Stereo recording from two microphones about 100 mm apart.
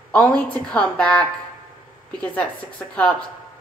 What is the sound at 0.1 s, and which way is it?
A woman's voice, 10° left (ahead or behind).